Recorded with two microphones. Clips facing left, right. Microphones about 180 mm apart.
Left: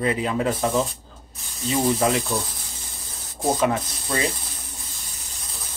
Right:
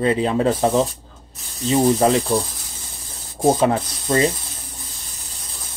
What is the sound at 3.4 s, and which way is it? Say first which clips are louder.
Speech: right 5 dB; 25° right (ahead or behind).